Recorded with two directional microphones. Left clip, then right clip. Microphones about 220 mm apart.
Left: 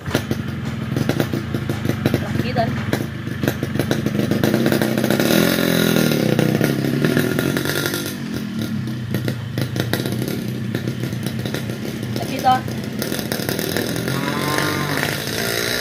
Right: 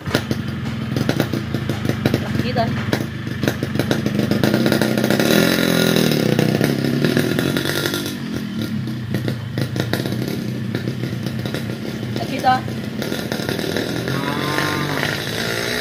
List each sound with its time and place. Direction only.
3.4 s motorcycle: 45° right (ahead or behind)
9.1 s vehicle: 5° right (ahead or behind)
12.5 s vehicle: 10° right (ahead or behind)
14.2 s vehicle: 25° left (ahead or behind)